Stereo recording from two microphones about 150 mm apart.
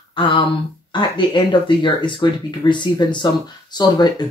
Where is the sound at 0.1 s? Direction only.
35° left (ahead or behind).